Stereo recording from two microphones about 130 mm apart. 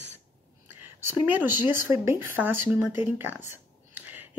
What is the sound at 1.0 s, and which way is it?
Speech, 15° right (ahead or behind).